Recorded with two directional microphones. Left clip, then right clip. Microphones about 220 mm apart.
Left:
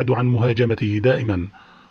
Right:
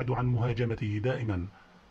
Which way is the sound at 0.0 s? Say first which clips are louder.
Left 12 dB; 20° left (ahead or behind).